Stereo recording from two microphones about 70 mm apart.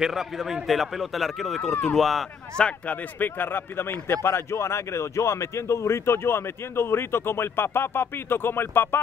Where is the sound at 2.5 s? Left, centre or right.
Centre.